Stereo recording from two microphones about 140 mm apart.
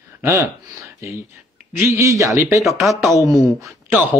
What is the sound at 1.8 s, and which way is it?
Speech, 20° right (ahead or behind).